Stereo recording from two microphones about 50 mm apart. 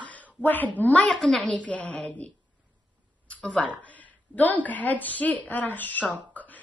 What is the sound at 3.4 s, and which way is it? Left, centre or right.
A woman's voice, left.